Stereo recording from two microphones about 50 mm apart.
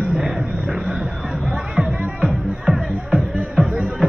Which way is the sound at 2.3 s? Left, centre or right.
Centre.